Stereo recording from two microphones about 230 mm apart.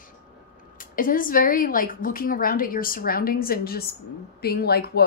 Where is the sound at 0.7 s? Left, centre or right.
Left.